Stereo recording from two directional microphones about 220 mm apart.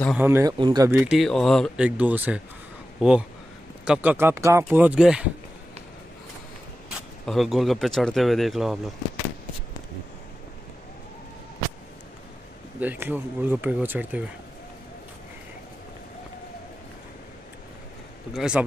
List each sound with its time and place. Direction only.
0.2 s speech: 10° right (ahead or behind)
0.9 s speech: centre (ahead or behind)
6.9 s speech: centre (ahead or behind)
12.8 s speech: 10° right (ahead or behind)
18.3 s speech: centre (ahead or behind)